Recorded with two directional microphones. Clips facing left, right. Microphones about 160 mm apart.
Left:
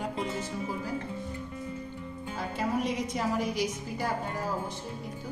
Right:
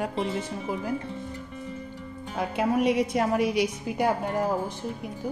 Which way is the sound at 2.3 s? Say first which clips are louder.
Right 6 dB; 65° right (ahead or behind).